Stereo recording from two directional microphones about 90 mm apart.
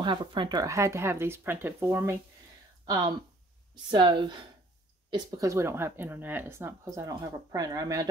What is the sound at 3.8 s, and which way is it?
Speech, 60° right (ahead or behind).